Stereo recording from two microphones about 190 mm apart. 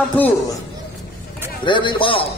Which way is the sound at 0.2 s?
10° left (ahead or behind).